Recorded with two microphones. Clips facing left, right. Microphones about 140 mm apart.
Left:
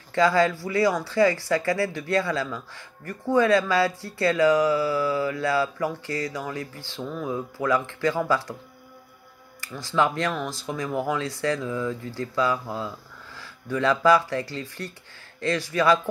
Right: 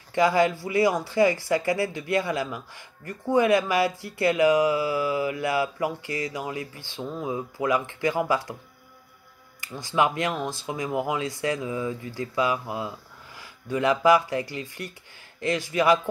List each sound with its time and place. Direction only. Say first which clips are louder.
0.1 s speech: even; 20° right (ahead or behind)
9.6 s speech: even; 20° right (ahead or behind)